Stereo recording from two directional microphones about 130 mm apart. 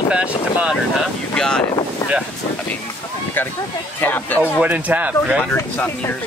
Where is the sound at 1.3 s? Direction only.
5° left (ahead or behind).